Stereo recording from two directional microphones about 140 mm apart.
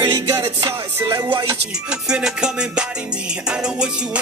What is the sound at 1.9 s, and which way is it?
Music, 5° right (ahead or behind).